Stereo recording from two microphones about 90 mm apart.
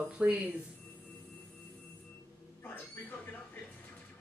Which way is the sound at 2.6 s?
20° left (ahead or behind).